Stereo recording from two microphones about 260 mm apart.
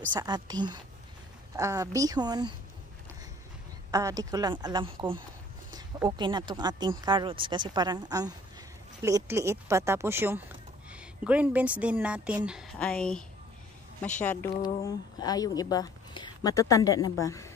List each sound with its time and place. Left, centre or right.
0.1 s speech: centre
3.9 s a woman's voice: centre
14.2 s a woman's voice: centre